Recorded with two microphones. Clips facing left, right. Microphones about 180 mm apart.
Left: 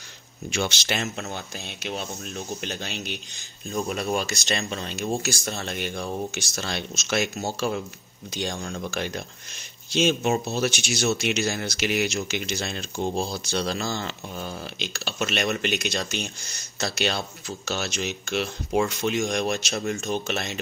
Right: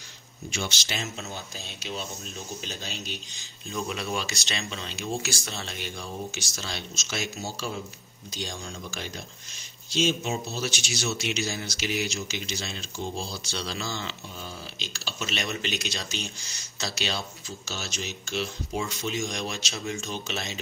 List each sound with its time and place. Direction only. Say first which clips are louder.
0.5 s speech: left 6 dB; 60° left (ahead or behind)
3.7 s speech: left 5 dB; 45° left (ahead or behind)